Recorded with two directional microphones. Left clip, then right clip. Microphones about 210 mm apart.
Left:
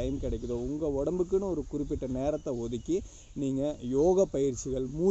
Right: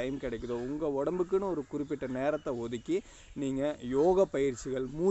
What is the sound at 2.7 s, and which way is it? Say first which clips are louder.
A man's voice: left 1 dB; centre (ahead or behind).